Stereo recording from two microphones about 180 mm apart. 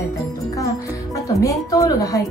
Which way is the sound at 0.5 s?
20° left (ahead or behind).